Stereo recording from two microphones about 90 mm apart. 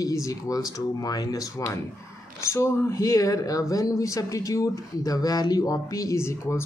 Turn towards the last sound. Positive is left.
turn(degrees=30)  # may be behind; listen again after turning